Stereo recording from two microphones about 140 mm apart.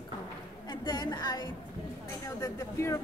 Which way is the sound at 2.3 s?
25° left (ahead or behind).